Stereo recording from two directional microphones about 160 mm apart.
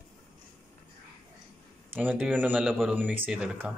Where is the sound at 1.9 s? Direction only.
10° right (ahead or behind).